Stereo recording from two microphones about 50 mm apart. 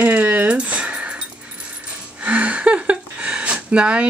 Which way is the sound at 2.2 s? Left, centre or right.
Right.